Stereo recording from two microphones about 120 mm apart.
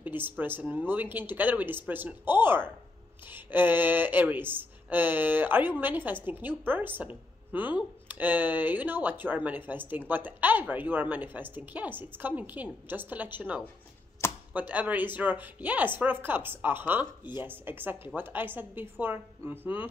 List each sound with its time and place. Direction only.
0.0 s speech: 15° right (ahead or behind)